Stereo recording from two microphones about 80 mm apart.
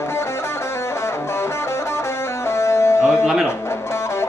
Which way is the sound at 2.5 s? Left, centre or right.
Left.